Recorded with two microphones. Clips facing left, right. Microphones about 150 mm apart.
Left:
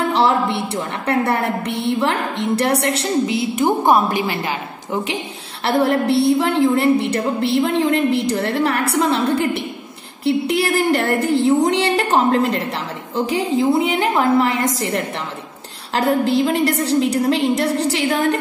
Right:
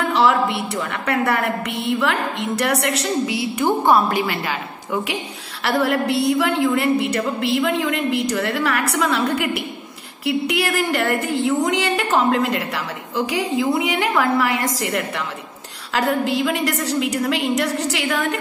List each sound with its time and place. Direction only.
0.1 s a woman's voice: 30° left (ahead or behind)